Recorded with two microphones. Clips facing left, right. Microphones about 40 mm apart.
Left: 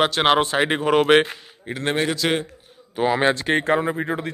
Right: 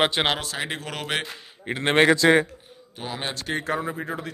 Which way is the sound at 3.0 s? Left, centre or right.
Left.